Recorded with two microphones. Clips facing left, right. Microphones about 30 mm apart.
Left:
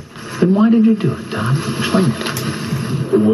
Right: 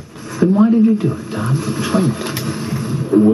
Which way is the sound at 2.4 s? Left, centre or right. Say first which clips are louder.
Even; left.